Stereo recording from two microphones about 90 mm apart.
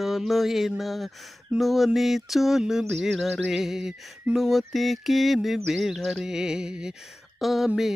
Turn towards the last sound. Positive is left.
turn(degrees=-5)  # may be behind; listen again after turning